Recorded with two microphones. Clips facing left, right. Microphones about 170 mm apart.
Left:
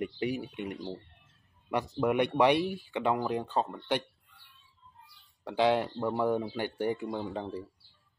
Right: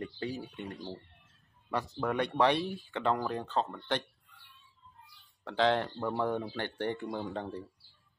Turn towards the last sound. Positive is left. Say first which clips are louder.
# left 2 dB
turn(degrees=0)  # may be behind; listen again after turning